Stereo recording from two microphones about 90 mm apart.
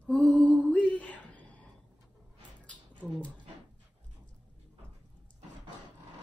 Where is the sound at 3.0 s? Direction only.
15° right (ahead or behind).